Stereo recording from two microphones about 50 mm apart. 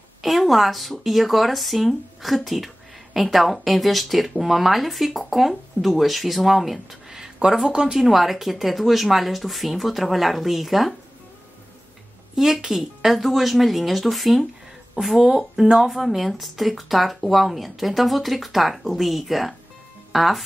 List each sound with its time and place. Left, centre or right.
0.2 s speech: centre
12.4 s speech: centre